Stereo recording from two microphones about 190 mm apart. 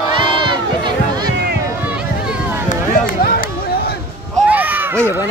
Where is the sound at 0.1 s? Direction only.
25° right (ahead or behind).